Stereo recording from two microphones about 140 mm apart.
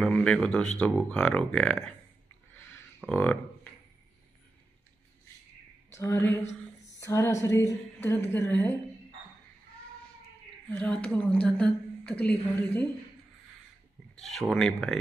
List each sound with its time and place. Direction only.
0.0 s a woman's voice: 10° left (ahead or behind)
3.1 s a woman's voice: 10° left (ahead or behind)
5.9 s a woman's voice: 20° left (ahead or behind)
7.0 s a sound: 20° left (ahead or behind)
7.4 s a woman's voice: 20° left (ahead or behind)
10.7 s a woman's voice: 10° left (ahead or behind)
14.2 s speech: 5° left (ahead or behind)